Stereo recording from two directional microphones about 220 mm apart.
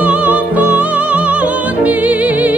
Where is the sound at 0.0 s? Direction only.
5° right (ahead or behind).